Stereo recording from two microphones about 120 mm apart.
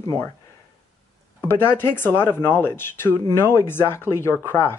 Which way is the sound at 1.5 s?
20° left (ahead or behind).